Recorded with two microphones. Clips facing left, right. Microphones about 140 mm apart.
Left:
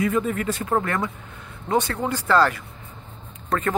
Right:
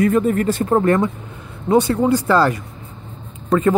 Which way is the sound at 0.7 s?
30° right (ahead or behind).